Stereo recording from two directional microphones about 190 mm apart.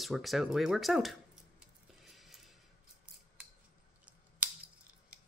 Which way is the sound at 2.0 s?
Centre (ahead or behind).